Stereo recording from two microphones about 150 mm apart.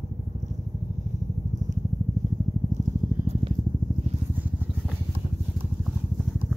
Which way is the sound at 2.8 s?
45° right (ahead or behind).